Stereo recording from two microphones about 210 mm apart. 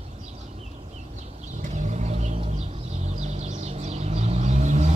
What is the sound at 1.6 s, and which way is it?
Vehicle, 35° right (ahead or behind).